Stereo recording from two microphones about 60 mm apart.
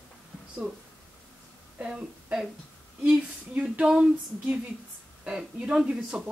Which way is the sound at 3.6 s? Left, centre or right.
Centre.